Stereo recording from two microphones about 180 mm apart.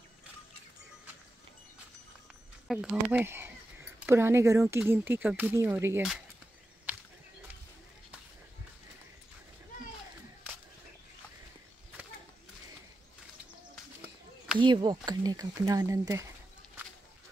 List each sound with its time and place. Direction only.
2.7 s speech: 5° right (ahead or behind)
14.6 s speech: 25° right (ahead or behind)